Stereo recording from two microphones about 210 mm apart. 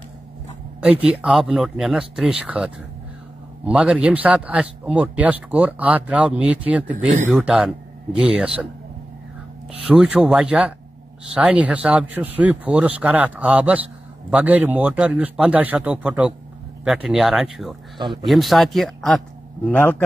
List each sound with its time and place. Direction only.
1.0 s speech: 5° right (ahead or behind)
9.7 s speech: 5° right (ahead or behind)
17.9 s speech: 20° right (ahead or behind)
18.2 s speech: centre (ahead or behind)